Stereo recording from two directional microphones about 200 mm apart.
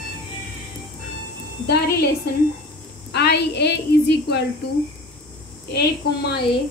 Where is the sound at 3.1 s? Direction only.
55° left (ahead or behind).